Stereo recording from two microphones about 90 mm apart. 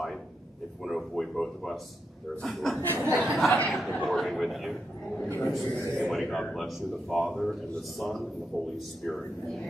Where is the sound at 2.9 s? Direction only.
25° right (ahead or behind).